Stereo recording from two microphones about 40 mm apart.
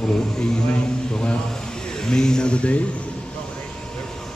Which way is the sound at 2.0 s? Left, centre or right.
Centre.